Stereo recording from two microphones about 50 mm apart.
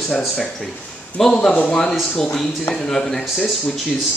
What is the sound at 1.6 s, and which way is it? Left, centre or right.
A man's voice, centre.